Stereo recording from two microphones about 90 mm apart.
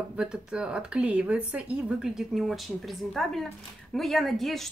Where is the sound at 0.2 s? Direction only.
10° right (ahead or behind).